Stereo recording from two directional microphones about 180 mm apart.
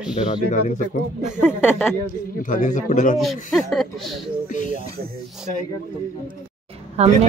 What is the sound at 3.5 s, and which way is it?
Speech, centre (ahead or behind).